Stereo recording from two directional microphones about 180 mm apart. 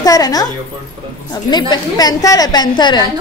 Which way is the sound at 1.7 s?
20° left (ahead or behind).